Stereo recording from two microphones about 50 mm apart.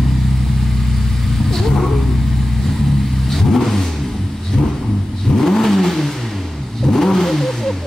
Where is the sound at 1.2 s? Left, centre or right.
Centre.